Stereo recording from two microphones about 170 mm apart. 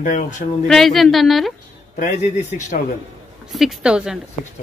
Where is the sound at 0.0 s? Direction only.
50° left (ahead or behind).